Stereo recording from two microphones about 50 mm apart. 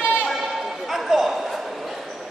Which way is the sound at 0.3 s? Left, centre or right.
Centre.